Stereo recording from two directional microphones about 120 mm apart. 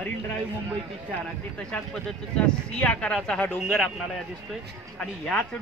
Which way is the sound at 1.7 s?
10° left (ahead or behind).